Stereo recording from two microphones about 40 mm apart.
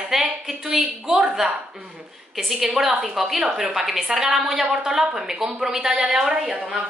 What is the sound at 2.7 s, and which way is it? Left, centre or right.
A woman's voice, centre.